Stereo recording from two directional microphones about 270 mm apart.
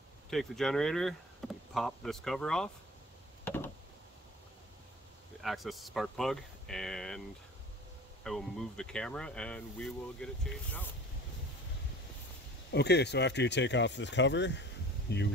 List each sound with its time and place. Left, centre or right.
0.3 s speech: centre
3.4 s a sound: centre
5.4 s speech: centre
12.7 s speech: left